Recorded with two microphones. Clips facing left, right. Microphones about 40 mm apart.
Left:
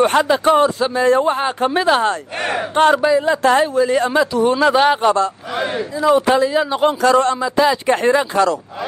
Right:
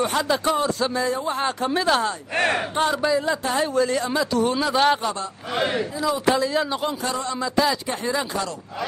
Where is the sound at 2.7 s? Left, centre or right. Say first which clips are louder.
Left 9 dB; left.